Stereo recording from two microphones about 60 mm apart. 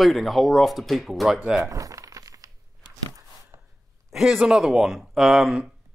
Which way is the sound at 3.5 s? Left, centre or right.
Right.